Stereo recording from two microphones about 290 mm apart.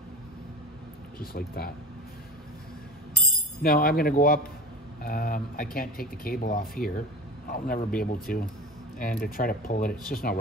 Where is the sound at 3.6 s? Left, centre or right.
Left.